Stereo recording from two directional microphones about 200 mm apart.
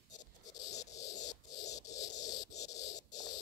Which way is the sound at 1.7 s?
15° left (ahead or behind).